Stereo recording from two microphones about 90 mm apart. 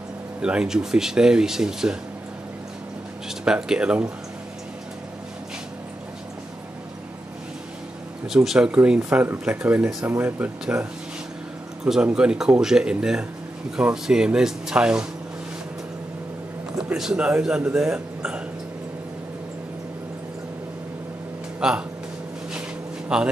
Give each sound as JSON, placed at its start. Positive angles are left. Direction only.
{"t": 0.4, "sound": "speech", "side_deg": -10}
{"t": 3.3, "sound": "speech", "side_deg": -5}
{"t": 8.3, "sound": "speech", "side_deg": -5}
{"t": 16.7, "sound": "speech", "side_deg": -5}
{"t": 21.5, "sound": "speech", "side_deg": -10}
{"t": 23.1, "sound": "speech", "side_deg": -10}